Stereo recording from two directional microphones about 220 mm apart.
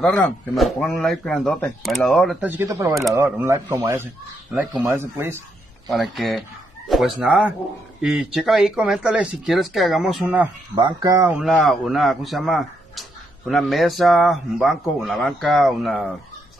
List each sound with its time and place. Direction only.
0.0 s speech: 5° left (ahead or behind); by 2.9 s 10° right (ahead or behind)
2.9 s speech: centre (ahead or behind)
6.1 s speech: centre (ahead or behind)
10.8 s speech: 20° right (ahead or behind)
11.3 s speech: centre (ahead or behind)